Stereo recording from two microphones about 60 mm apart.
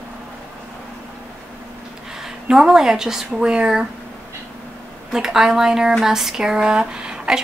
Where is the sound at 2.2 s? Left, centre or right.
Centre.